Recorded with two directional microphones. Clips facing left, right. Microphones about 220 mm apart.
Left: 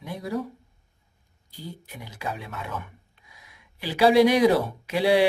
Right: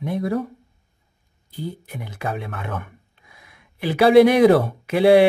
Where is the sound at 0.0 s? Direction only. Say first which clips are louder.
Right 7 dB; 55° right (ahead or behind).